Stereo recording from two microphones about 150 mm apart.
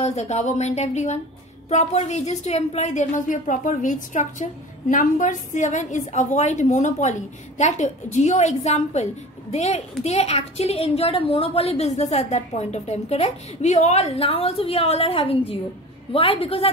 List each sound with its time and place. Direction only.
0.0 s a woman's voice: 50° left (ahead or behind)